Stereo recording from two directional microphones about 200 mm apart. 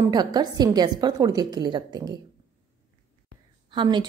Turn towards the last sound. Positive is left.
turn(degrees=-25)  # may be behind; listen again after turning